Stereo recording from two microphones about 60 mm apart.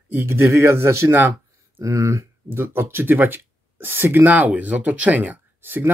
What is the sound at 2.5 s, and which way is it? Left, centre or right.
Speech, right.